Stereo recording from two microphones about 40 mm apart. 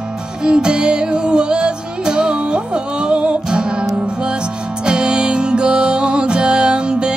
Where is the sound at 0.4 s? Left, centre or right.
Right.